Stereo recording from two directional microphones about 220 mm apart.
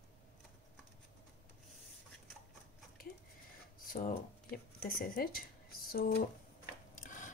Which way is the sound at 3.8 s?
35° left (ahead or behind).